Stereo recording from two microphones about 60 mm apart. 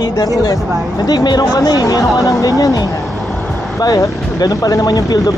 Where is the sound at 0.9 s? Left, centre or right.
Left.